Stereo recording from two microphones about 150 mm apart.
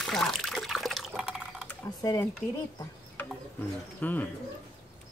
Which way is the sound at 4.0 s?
10° left (ahead or behind).